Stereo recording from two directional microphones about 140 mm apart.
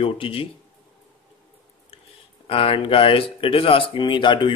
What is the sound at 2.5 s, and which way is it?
Speech, 40° left (ahead or behind).